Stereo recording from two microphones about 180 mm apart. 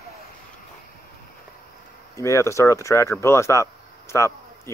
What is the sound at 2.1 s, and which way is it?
Speech, 15° left (ahead or behind).